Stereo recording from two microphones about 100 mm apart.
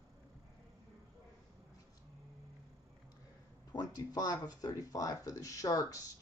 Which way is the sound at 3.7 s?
40° left (ahead or behind).